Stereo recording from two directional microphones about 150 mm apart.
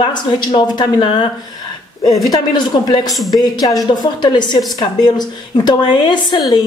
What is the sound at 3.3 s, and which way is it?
A woman's voice, 25° left (ahead or behind).